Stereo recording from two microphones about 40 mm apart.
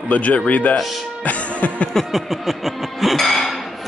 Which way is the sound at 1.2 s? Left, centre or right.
Left.